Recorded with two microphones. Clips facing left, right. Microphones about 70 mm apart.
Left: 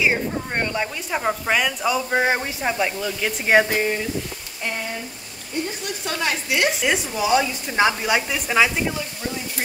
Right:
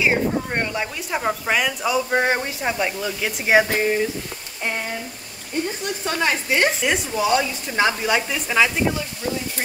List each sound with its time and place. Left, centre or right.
0.0 s speech: centre
6.0 s a woman's voice: right
6.8 s speech: centre